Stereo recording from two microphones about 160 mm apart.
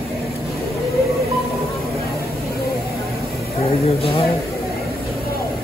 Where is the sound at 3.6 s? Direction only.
35° left (ahead or behind).